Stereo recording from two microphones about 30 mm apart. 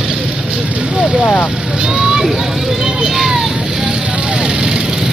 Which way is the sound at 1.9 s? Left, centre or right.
Centre.